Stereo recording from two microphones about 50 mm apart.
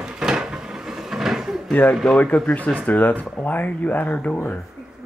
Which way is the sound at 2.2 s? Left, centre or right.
Left.